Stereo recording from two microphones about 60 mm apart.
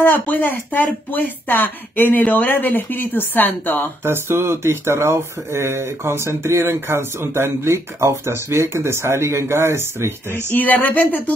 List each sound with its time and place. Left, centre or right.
0.0 s speech: left
4.0 s speech: right
10.5 s speech: left